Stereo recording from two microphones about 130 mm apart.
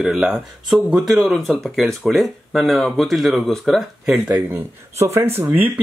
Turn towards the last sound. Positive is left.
turn(degrees=-15)  # may be behind; listen again after turning